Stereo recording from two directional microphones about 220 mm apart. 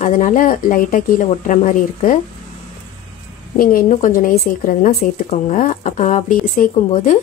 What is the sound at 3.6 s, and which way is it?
Speech, 40° left (ahead or behind).